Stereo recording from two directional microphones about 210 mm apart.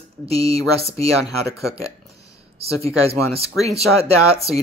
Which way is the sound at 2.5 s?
30° right (ahead or behind).